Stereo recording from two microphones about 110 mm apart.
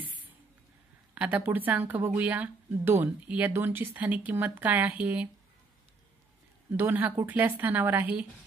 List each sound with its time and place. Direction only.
1.1 s speech: 10° right (ahead or behind)
6.7 s speech: 20° right (ahead or behind)